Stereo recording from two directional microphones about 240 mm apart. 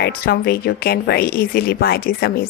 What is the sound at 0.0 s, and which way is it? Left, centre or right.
Speech, left.